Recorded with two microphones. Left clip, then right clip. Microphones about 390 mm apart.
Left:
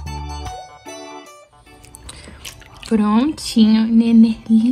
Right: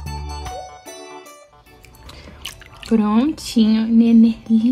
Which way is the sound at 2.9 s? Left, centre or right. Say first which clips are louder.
Left 1 dB; centre.